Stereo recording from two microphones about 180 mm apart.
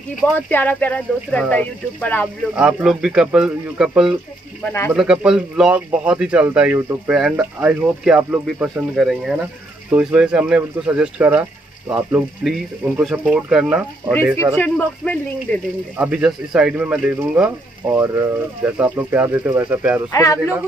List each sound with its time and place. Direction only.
0.5 s speech: 10° left (ahead or behind)
2.5 s a man's voice: 5° right (ahead or behind)
14.6 s speech: 10° left (ahead or behind)
16.0 s a man's voice: 10° right (ahead or behind)
20.1 s speech: 20° left (ahead or behind)